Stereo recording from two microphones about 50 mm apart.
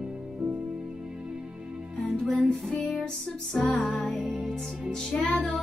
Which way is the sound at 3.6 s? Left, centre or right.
Left.